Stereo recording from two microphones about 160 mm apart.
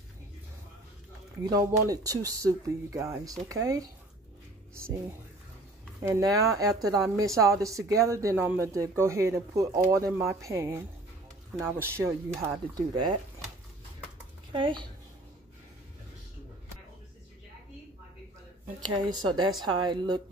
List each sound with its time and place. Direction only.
1.4 s speech: 25° right (ahead or behind)
5.9 s speech: 20° right (ahead or behind)
14.5 s speech: 30° right (ahead or behind)
18.9 s speech: 25° right (ahead or behind)